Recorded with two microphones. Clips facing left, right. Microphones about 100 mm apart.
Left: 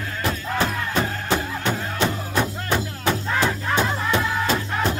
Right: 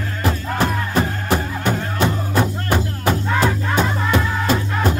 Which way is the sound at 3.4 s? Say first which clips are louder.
Right 2 dB; 50° right (ahead or behind).